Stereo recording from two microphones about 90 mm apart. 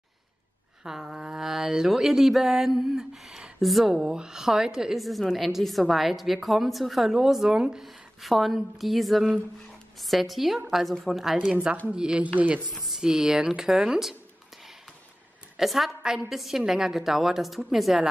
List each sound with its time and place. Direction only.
0.8 s mantra: 5° right (ahead or behind)
3.9 s a woman's voice: 10° right (ahead or behind)
12.7 s speech: centre (ahead or behind)
15.5 s a woman's voice: centre (ahead or behind)